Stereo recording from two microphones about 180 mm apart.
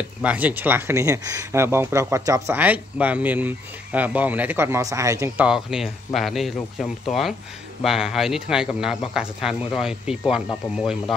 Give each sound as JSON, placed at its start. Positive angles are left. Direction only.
{"t": 0.2, "sound": "speech", "side_deg": -10}
{"t": 5.5, "sound": "speech", "side_deg": -5}